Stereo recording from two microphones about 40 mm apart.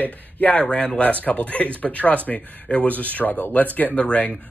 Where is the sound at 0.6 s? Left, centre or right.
Left.